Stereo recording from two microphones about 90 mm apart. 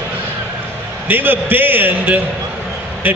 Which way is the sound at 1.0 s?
20° right (ahead or behind).